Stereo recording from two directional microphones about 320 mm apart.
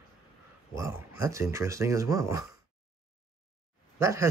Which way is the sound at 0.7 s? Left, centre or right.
Centre.